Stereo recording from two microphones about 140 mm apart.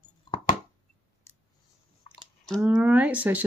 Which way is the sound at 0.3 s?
35° left (ahead or behind).